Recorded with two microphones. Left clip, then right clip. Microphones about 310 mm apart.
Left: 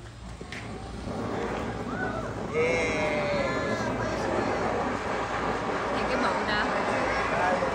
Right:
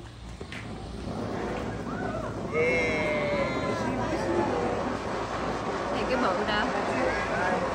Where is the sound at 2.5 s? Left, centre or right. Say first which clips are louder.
Even; centre.